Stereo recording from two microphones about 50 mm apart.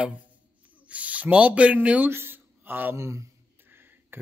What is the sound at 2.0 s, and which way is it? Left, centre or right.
Speech, right.